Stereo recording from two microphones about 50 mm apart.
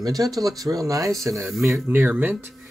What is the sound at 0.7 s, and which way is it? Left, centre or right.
Speech, right.